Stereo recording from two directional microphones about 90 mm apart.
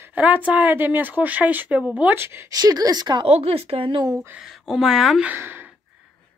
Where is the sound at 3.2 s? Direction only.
90° right.